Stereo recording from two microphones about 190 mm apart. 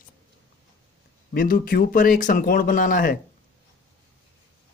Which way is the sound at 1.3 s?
50° left (ahead or behind).